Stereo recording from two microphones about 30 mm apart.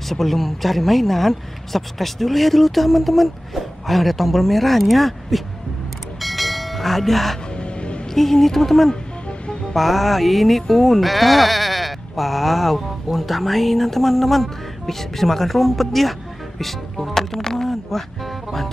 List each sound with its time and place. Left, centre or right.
0.1 s a woman's voice: centre
6.2 s train: centre
7.5 s music: left
8.1 s a woman's voice: centre
17.6 s music: centre